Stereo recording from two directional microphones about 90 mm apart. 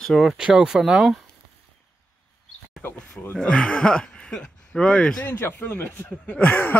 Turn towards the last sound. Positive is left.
turn(degrees=20)  # may be behind; listen again after turning